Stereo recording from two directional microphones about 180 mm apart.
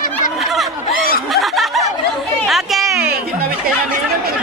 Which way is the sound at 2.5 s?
Centre (ahead or behind).